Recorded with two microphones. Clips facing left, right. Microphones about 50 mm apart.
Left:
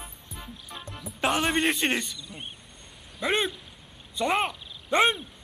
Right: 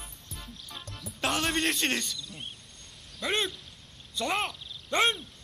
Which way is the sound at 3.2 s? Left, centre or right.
Centre.